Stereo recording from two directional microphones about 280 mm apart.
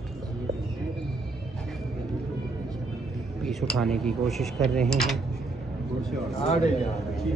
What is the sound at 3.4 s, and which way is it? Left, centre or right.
Speech, centre.